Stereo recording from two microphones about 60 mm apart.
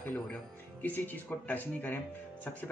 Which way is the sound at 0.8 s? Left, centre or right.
Left.